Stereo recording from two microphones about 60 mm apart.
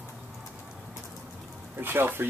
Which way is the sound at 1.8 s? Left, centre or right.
Right.